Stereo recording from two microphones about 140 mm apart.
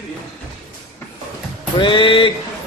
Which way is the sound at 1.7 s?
35° left (ahead or behind).